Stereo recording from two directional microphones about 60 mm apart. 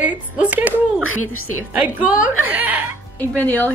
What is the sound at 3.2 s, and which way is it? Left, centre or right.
Speech, left.